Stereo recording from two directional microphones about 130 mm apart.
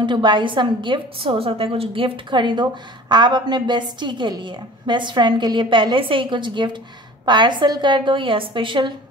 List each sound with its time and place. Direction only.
0.0 s a woman's voice: 35° right (ahead or behind)